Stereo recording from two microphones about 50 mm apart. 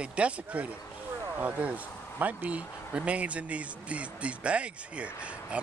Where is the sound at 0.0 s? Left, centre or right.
Right.